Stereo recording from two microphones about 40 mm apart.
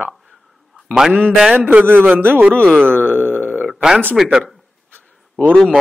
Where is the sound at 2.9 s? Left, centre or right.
Left.